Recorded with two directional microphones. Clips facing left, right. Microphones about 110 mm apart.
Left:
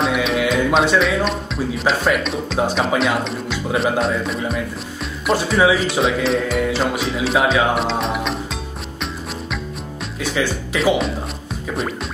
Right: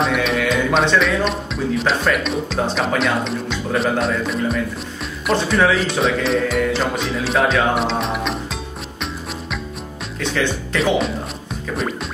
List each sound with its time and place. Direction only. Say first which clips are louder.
0.0 s speech: even; centre (ahead or behind)
10.2 s speech: even; 5° left (ahead or behind)